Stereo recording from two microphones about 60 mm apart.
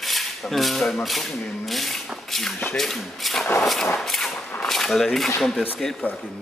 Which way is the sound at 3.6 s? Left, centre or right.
Centre.